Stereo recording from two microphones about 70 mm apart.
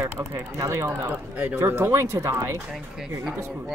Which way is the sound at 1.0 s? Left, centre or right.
Right.